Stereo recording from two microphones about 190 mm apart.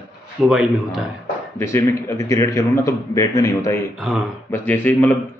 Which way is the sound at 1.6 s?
15° left (ahead or behind).